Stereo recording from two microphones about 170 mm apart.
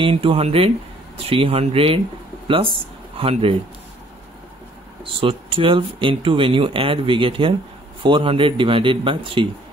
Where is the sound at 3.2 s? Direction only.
35° right (ahead or behind).